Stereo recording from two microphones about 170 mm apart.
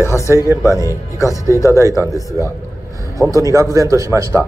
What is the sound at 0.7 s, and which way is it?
Speech, 20° left (ahead or behind).